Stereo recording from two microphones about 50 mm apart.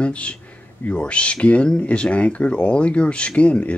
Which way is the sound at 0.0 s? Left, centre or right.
Left.